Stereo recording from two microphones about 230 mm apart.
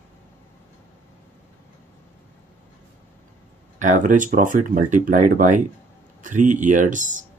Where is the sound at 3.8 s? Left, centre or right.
Right.